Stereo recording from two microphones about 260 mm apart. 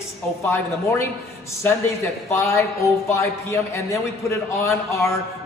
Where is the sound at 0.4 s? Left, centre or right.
Centre.